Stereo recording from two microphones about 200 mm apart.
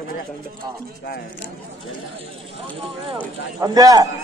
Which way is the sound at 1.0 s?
55° left (ahead or behind).